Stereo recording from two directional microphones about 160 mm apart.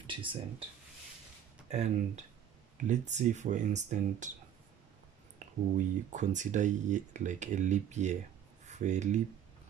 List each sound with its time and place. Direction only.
0.0 s speech: 30° right (ahead or behind)
1.7 s speech: 45° right (ahead or behind)
5.8 s speech: 50° right (ahead or behind)